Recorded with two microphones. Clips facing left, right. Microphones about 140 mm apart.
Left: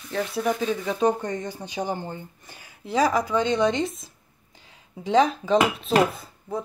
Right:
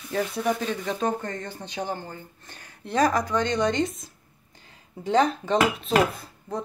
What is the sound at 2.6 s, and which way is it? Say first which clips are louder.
Speech: even; 5° left (ahead or behind).